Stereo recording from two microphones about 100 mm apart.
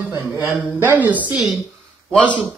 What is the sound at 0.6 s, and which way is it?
Speech, 20° right (ahead or behind).